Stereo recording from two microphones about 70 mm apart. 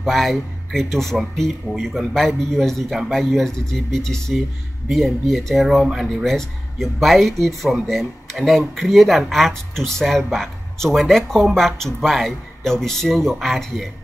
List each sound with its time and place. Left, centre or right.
0.0 s speech: centre